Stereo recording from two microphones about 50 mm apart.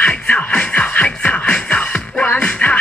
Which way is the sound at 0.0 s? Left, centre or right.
Left.